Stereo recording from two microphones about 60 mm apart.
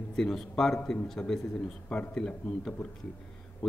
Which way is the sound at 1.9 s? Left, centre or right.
Left.